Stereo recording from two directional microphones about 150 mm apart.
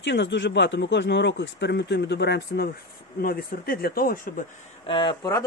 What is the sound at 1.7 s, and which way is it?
Speech, 90° left.